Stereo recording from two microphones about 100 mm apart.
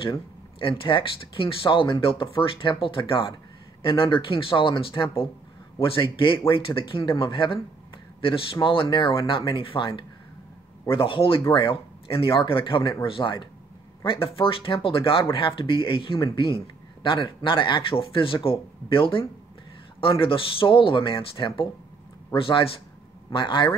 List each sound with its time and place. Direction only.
0.6 s a man's voice: 60° left (ahead or behind)